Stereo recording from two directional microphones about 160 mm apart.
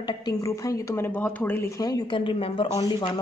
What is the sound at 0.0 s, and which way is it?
Speech, 25° left (ahead or behind).